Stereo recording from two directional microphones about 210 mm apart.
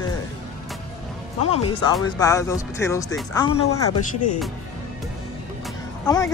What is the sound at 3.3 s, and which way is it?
Speech, 25° left (ahead or behind).